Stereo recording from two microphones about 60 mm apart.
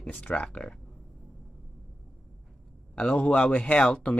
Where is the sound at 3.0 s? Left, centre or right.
Centre.